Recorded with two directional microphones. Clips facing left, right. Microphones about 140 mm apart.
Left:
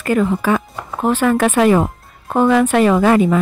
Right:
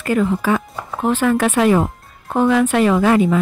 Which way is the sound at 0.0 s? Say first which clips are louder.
Left 1 dB; 55° left (ahead or behind).